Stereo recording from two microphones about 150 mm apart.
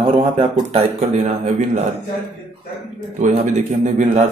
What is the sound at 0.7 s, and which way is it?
A man's voice, 45° right (ahead or behind).